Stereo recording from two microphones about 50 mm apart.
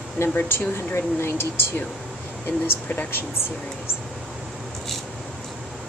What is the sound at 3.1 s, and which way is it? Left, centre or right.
Speech, left.